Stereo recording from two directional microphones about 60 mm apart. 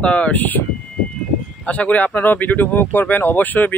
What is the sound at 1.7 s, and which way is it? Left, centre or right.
Speech, left.